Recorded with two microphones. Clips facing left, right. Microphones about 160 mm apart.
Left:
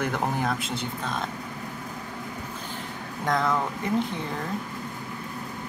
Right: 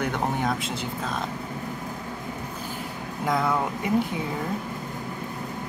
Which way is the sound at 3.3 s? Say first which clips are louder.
Even; 5° right (ahead or behind).